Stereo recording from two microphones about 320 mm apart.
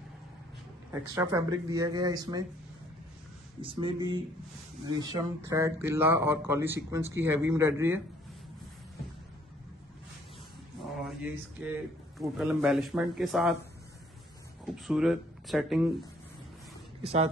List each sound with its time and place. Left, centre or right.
1.0 s speech: centre
3.6 s speech: centre
11.6 s a man's voice: centre
14.7 s a man's voice: centre
17.0 s speech: centre